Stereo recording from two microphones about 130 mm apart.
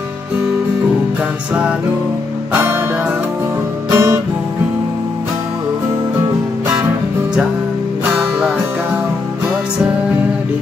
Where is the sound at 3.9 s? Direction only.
20° right (ahead or behind).